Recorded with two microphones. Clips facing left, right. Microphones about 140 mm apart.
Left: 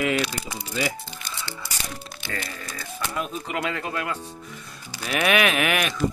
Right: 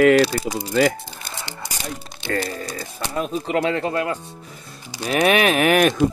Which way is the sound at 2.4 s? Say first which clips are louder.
Right 8 dB; 35° right (ahead or behind).